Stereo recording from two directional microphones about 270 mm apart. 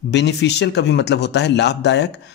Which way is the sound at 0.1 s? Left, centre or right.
Left.